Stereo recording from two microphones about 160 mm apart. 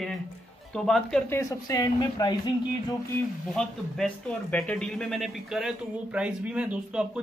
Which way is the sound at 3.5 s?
5° left (ahead or behind).